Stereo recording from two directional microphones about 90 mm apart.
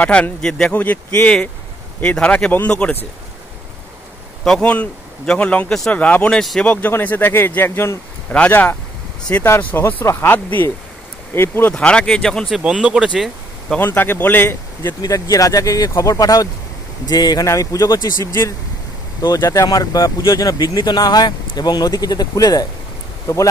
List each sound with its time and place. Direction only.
0.0 s a man's voice: 15° left (ahead or behind)
0.7 s a man's voice: 20° left (ahead or behind)
4.5 s a man's voice: 10° left (ahead or behind)
11.7 s a man's voice: 10° left (ahead or behind)
12.6 s speech: 10° right (ahead or behind)
13.7 s speech: 20° left (ahead or behind)
15.0 s speech: 40° left (ahead or behind)